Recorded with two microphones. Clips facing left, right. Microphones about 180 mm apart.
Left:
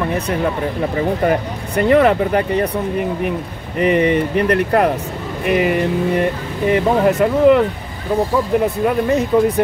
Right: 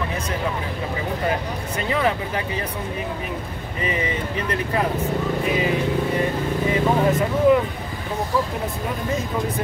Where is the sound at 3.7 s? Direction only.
65° left (ahead or behind).